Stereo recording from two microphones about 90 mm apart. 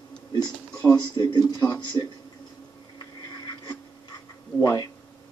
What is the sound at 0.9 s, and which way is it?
Speech, 55° left (ahead or behind).